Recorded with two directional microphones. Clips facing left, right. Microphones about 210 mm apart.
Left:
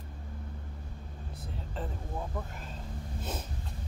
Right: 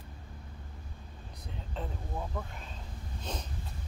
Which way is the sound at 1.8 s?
Centre (ahead or behind).